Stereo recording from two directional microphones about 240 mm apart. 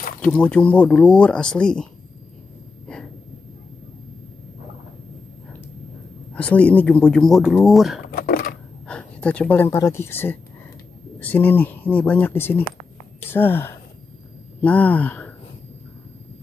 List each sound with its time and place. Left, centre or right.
0.2 s speech: centre
6.3 s speech: centre
8.1 s a sound: left
8.8 s speech: centre